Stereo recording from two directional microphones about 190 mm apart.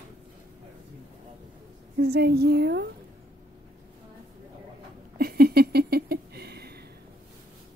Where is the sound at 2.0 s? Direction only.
60° right (ahead or behind).